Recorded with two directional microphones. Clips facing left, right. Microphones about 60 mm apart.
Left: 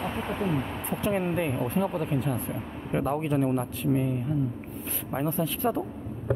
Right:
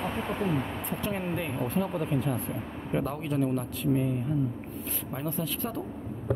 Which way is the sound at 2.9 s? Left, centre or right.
Centre.